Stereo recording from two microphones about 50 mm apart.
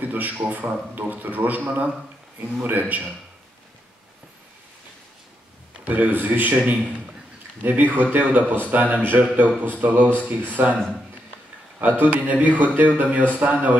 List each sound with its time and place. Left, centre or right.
0.0 s speech: right
5.9 s speech: right
6.6 s a man's voice: right
7.6 s speech: right
11.8 s speech: right